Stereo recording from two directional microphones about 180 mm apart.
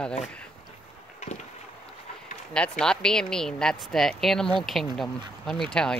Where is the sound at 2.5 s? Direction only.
5° left (ahead or behind).